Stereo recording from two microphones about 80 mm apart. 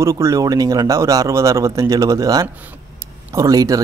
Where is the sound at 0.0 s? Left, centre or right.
Right.